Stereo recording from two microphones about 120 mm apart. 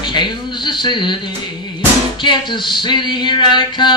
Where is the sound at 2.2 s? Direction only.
40° left (ahead or behind).